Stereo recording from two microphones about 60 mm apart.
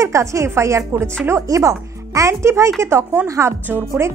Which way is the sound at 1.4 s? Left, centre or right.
Right.